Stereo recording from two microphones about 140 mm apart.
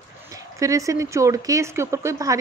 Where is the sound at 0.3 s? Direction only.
25° right (ahead or behind).